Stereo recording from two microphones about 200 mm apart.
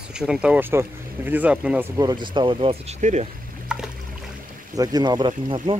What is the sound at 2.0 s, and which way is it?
Speech, 20° right (ahead or behind).